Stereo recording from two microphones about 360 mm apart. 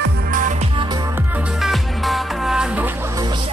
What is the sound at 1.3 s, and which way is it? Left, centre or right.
Music, centre.